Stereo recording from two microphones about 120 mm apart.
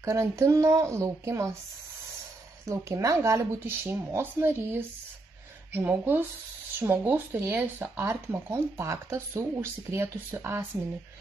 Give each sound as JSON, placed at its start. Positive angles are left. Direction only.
{"t": 0.0, "sound": "speech", "side_deg": -25}
{"t": 2.6, "sound": "speech", "side_deg": -25}